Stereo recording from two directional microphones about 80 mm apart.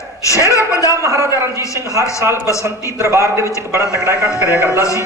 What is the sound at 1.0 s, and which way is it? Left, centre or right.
Speech, right.